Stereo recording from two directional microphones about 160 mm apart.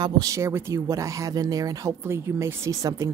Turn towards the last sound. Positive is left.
turn(degrees=-20)  # may be behind; listen again after turning